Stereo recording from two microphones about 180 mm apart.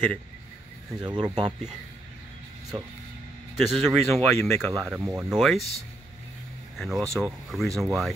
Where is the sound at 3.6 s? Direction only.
Centre (ahead or behind).